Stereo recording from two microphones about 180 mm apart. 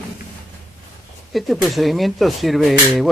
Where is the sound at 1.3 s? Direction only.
Centre (ahead or behind).